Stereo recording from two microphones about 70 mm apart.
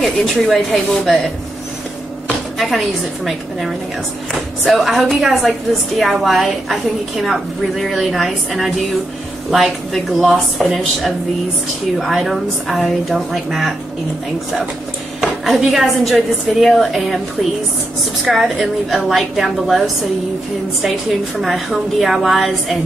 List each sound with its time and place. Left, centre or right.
0.0 s a woman's voice: centre
4.3 s a woman's voice: centre
15.1 s a woman's voice: centre
18.2 s a woman's voice: centre
21.4 s a woman's voice: centre